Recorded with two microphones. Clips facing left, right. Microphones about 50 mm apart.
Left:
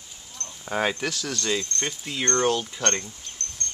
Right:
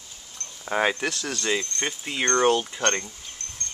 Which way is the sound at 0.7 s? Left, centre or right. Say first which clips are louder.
Right 2 dB; centre.